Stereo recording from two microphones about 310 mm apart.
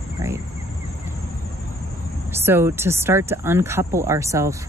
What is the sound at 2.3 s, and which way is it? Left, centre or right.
Speech, centre.